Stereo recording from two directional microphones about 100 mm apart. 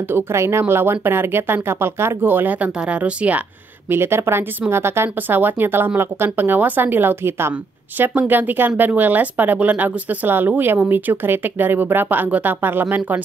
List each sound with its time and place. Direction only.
0.1 s speech: 25° right (ahead or behind)